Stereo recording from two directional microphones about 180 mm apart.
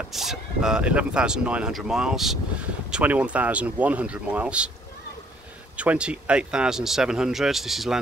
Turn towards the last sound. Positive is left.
turn(degrees=0)  # may be behind; listen again after turning